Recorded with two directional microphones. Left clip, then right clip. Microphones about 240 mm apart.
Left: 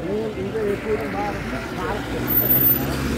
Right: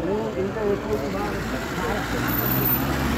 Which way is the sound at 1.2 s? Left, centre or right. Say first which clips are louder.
Left 1 dB; right.